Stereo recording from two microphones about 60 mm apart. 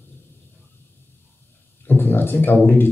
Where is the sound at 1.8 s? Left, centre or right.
Left.